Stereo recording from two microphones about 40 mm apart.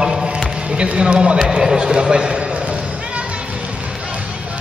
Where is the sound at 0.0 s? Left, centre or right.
Centre.